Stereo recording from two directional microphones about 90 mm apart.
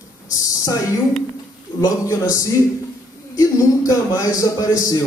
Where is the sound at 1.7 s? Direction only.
35° left (ahead or behind).